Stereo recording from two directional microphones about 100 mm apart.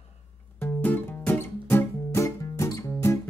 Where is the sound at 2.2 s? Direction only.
35° left (ahead or behind).